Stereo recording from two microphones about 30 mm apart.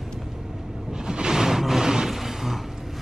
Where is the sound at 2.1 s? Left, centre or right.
Centre.